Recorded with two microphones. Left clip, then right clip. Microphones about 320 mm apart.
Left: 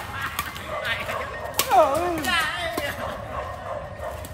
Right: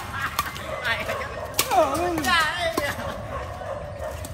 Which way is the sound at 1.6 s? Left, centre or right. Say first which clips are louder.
Left 2 dB; centre.